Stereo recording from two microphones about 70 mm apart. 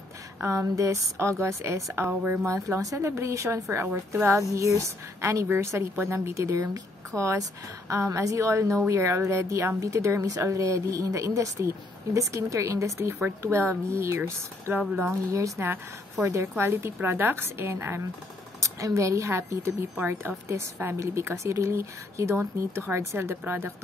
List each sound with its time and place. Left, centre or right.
0.4 s a woman's voice: right
2.0 s a woman's voice: right
2.4 s a woman's voice: right
3.8 s a woman's voice: right
18.6 s a woman's voice: right